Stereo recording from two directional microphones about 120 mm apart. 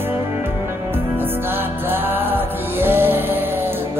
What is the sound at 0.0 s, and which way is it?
Music, 20° right (ahead or behind).